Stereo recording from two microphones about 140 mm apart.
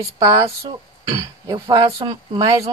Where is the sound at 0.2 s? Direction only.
30° right (ahead or behind).